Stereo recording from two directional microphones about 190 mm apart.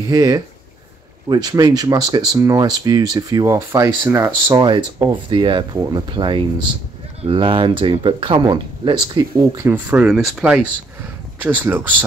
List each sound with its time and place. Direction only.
0.1 s speech: 20° right (ahead or behind)